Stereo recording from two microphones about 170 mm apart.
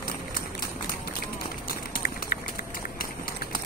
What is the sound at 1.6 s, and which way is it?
Run, 60° left (ahead or behind).